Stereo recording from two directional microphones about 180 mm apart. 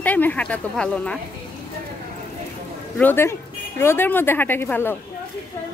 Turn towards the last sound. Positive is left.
turn(degrees=10)  # may be behind; listen again after turning